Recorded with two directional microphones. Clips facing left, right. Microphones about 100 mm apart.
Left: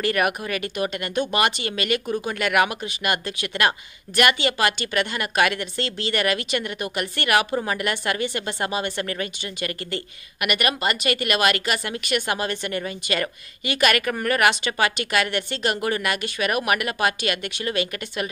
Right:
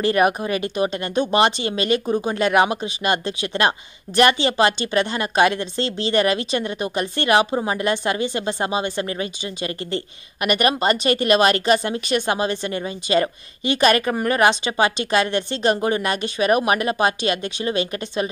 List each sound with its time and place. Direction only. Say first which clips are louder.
0.0 s speech: right 5 dB; 25° right (ahead or behind)